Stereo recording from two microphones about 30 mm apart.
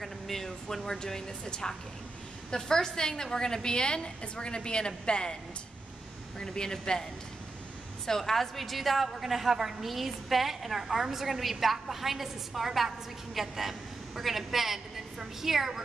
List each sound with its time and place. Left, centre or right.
0.0 s speech: centre
0.8 s a woman's voice: left
6.4 s a woman's voice: left
8.2 s a woman's voice: centre